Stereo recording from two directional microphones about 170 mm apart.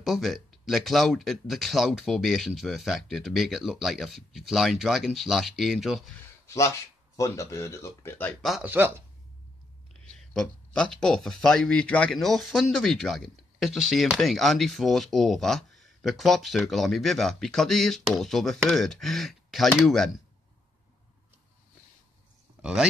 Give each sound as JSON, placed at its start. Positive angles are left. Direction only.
{"t": 0.0, "sound": "speech", "side_deg": 0}
{"t": 6.4, "sound": "speech", "side_deg": 15}
{"t": 8.6, "sound": "speech", "side_deg": -10}
{"t": 10.3, "sound": "speech", "side_deg": 5}
{"t": 22.6, "sound": "a sound", "side_deg": -5}